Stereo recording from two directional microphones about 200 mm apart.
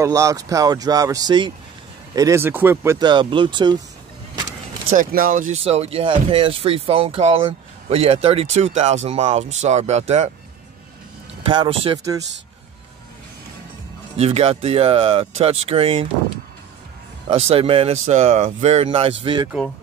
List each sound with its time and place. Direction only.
0.0 s speech: 15° right (ahead or behind)
4.9 s speech: 45° right (ahead or behind)
5.6 s speech: 30° right (ahead or behind)
11.4 s speech: 25° right (ahead or behind)
14.1 s speech: 30° right (ahead or behind)
17.3 s speech: 30° right (ahead or behind)